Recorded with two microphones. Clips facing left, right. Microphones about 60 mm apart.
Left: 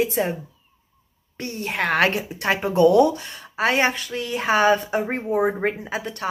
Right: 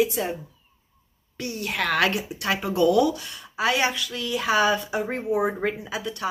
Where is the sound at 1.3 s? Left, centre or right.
Left.